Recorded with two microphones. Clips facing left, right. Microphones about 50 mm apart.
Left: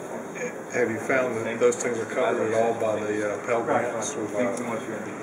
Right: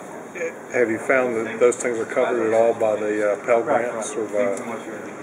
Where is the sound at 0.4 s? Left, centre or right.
Centre.